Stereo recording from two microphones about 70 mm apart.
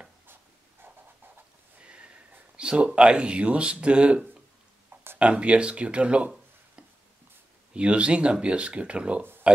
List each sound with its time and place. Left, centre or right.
1.8 s a sound: centre
2.5 s speech: centre
5.2 s speech: centre
7.7 s speech: centre